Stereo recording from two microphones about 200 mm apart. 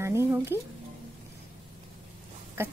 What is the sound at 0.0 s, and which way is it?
Speech, 15° right (ahead or behind).